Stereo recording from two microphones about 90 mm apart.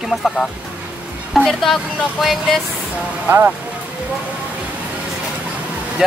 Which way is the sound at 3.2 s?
25° right (ahead or behind).